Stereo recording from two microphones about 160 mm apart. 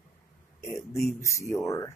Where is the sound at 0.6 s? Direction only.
20° left (ahead or behind).